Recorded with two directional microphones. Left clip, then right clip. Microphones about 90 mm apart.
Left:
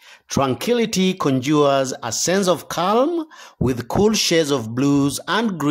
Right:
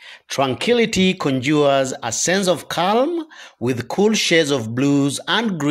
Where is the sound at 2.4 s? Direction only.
55° left (ahead or behind).